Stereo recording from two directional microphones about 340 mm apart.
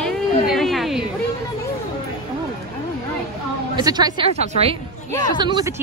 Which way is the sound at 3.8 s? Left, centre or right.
Centre.